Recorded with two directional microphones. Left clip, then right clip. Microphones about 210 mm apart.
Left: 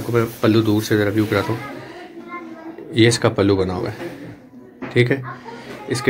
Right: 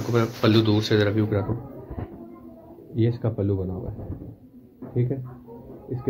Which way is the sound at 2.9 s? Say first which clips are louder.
Left 12 dB; 15° left (ahead or behind).